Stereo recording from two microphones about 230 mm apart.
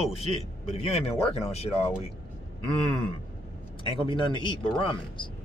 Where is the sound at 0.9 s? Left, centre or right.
Left.